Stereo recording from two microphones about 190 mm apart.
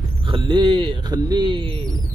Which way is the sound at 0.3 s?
25° right (ahead or behind).